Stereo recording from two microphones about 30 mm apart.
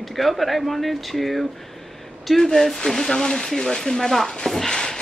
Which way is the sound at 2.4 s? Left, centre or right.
Centre.